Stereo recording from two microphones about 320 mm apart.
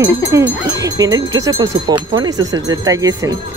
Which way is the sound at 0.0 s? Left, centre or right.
Centre.